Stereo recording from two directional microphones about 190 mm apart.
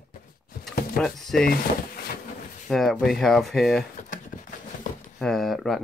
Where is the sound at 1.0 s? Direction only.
5° left (ahead or behind).